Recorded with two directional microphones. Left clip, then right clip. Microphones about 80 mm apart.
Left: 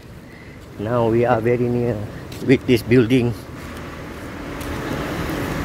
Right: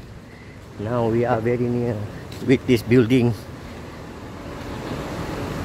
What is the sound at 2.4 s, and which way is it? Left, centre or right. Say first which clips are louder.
Speech: left 2 dB; right.